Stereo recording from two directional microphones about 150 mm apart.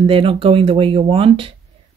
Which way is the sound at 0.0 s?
35° right (ahead or behind).